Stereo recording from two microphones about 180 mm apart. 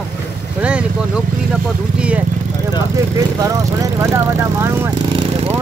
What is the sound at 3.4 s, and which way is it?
Speech, 20° right (ahead or behind).